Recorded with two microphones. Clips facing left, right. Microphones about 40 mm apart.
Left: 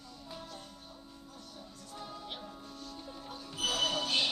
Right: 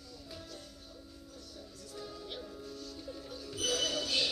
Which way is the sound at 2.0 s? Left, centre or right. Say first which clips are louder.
Even; left.